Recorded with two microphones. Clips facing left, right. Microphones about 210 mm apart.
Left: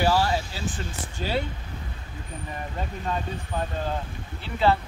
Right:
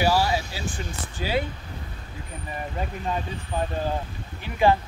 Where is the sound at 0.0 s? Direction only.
10° right (ahead or behind).